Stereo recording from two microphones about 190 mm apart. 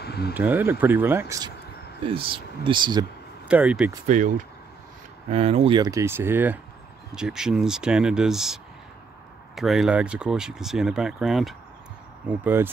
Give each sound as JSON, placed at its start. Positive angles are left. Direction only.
{"t": 0.0, "sound": "a sound", "side_deg": 55}
{"t": 0.3, "sound": "speech", "side_deg": -10}
{"t": 2.0, "sound": "speech", "side_deg": -30}
{"t": 3.4, "sound": "speech", "side_deg": -5}
{"t": 5.3, "sound": "speech", "side_deg": -35}
{"t": 5.8, "sound": "speech", "side_deg": -15}
{"t": 9.6, "sound": "speech", "side_deg": 0}